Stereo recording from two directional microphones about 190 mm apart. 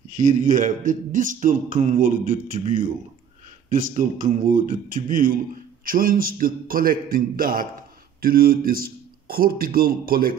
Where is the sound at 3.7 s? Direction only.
45° right (ahead or behind).